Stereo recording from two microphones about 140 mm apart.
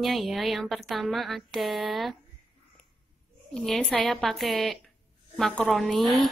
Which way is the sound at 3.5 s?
5° left (ahead or behind).